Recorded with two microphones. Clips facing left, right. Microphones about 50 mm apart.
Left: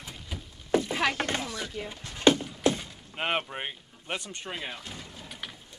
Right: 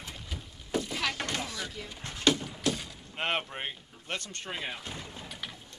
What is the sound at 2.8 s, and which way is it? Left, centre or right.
Speech, centre.